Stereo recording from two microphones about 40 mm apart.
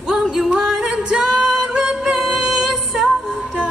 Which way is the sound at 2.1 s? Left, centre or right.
Centre.